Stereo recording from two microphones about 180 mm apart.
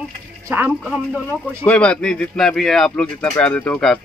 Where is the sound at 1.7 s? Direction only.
5° left (ahead or behind).